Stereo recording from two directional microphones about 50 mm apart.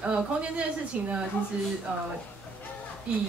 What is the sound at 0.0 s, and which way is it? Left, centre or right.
A woman's voice, right.